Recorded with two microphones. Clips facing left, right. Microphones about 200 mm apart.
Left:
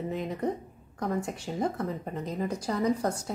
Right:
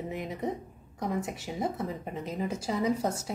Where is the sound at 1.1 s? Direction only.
5° right (ahead or behind).